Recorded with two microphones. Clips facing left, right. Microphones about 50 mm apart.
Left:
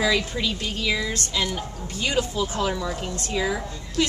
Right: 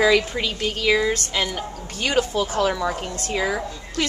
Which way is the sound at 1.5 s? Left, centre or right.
Right.